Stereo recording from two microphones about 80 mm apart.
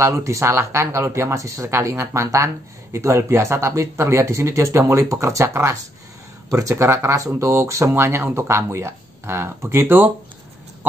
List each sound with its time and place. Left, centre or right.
0.0 s speech: right